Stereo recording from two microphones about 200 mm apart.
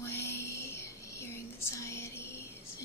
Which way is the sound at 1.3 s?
15° left (ahead or behind).